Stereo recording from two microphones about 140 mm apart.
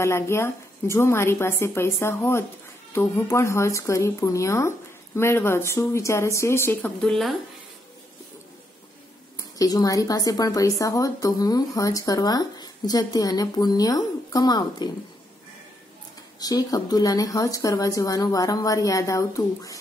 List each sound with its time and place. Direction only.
0.0 s speech: 20° left (ahead or behind); by 7.3 s centre (ahead or behind)
9.4 s speech: 25° left (ahead or behind)
16.3 s speech: 25° left (ahead or behind)